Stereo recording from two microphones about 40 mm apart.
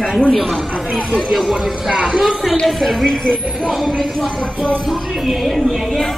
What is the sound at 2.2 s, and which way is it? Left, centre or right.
Speech, centre.